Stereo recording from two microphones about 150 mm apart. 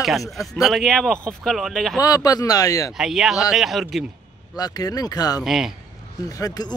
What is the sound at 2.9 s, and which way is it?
Speech, 5° right (ahead or behind).